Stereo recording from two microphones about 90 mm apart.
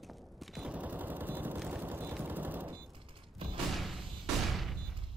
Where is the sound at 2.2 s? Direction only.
20° right (ahead or behind).